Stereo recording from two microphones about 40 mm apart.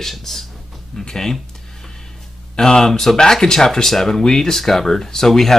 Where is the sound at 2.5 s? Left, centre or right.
Centre.